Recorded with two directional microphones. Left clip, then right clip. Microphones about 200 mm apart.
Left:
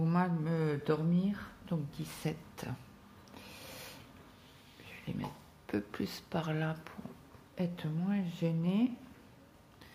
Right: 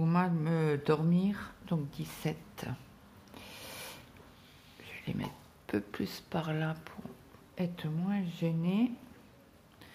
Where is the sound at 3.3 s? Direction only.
15° right (ahead or behind).